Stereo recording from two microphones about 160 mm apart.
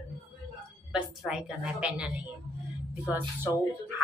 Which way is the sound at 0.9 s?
5° right (ahead or behind).